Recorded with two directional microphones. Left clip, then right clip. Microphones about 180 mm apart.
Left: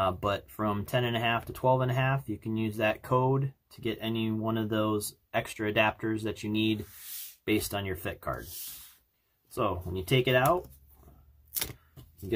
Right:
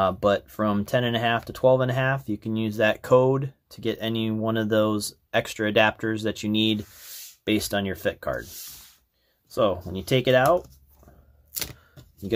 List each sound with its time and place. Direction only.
0.0 s speech: 40° right (ahead or behind)
9.5 s speech: 40° right (ahead or behind)
11.5 s a sound: 5° left (ahead or behind)